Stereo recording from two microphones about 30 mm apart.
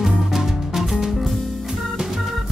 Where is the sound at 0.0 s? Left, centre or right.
Centre.